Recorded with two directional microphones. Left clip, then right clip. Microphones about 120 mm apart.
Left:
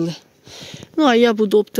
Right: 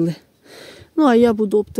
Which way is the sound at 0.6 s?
90° right.